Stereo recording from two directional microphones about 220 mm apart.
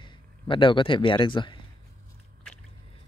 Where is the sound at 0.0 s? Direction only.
20° left (ahead or behind).